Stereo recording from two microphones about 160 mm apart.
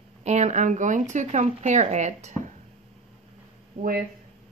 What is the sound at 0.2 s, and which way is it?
Speech, 45° right (ahead or behind).